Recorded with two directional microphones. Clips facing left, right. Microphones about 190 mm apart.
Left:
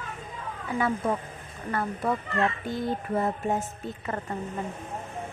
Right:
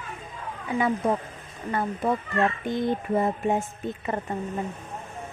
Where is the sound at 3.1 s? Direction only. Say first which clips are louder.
Right 2 dB; 15° right (ahead or behind).